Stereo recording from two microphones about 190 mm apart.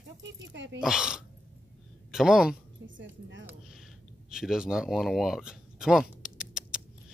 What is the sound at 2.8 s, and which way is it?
Speech, 75° right (ahead or behind).